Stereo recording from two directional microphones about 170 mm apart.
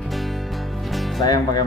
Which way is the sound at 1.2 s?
20° left (ahead or behind).